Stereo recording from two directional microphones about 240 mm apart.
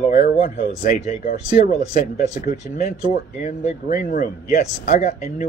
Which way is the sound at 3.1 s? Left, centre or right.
Left.